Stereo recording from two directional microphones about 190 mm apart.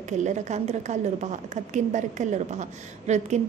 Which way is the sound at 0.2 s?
40° right (ahead or behind).